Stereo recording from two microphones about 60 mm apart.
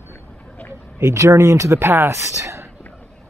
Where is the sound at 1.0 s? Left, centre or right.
Right.